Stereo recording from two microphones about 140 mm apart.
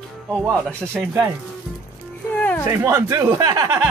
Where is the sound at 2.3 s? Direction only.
10° left (ahead or behind).